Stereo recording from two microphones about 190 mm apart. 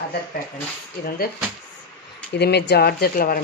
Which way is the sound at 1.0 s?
50° left (ahead or behind).